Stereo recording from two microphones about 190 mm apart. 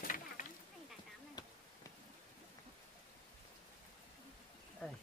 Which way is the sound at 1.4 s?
20° left (ahead or behind).